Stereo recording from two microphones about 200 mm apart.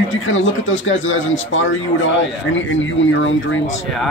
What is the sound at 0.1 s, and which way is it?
Speech, 75° left (ahead or behind).